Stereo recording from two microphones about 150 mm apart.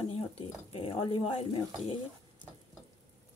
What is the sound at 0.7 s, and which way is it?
Speech, 35° left (ahead or behind).